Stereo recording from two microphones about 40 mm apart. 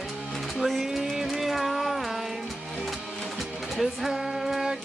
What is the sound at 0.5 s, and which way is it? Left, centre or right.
Music, centre.